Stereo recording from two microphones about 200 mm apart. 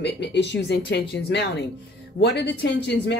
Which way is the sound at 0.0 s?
60° left (ahead or behind).